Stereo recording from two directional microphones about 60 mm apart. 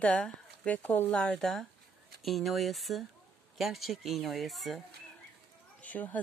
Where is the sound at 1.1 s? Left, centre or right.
Centre.